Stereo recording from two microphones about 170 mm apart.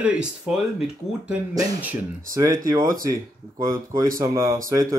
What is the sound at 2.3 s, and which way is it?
Speech, 20° right (ahead or behind).